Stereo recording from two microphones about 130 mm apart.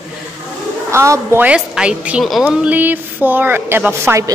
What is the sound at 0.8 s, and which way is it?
Speech, 20° right (ahead or behind).